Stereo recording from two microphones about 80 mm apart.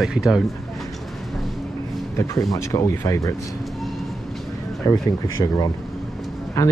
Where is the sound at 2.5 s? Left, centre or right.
Left.